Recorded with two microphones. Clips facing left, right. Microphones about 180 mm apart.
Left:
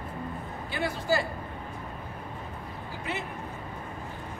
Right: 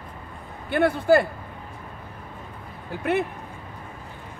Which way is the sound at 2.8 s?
60° right (ahead or behind).